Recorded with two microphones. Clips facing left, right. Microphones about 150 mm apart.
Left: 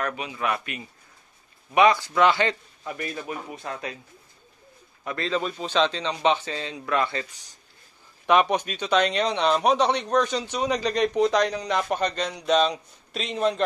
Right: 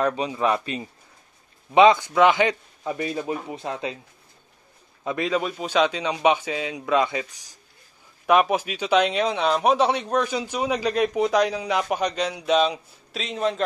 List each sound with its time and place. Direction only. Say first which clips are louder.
0.0 s a man's voice: right 6 dB; 30° right (ahead or behind)
5.0 s a man's voice: right 3 dB; 15° right (ahead or behind)